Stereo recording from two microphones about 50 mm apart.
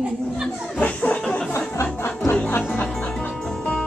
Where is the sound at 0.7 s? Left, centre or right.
Left.